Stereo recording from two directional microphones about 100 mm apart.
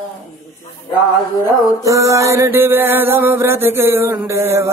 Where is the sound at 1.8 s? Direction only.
35° right (ahead or behind).